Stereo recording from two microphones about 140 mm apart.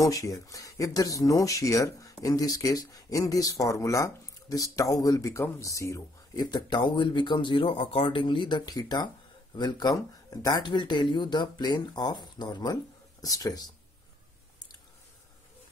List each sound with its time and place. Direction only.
0.0 s speech: 25° left (ahead or behind)